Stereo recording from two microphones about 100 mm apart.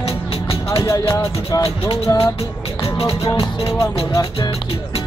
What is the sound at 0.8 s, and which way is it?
Music, 30° left (ahead or behind).